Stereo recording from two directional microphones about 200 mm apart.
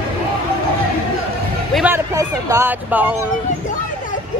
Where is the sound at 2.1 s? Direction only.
15° right (ahead or behind).